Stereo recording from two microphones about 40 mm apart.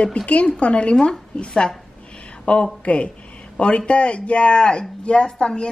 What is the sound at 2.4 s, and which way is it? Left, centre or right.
A woman's voice, left.